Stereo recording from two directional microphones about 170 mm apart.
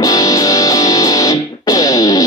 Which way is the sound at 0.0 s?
20° left (ahead or behind).